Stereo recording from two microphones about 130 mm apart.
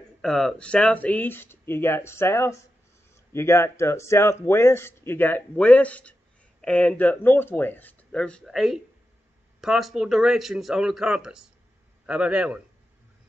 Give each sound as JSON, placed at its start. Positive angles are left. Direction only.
{"t": 0.2, "sound": "a man's voice", "side_deg": 5}